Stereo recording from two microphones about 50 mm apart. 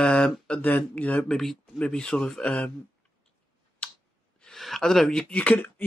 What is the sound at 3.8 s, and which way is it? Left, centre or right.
Clicking, left.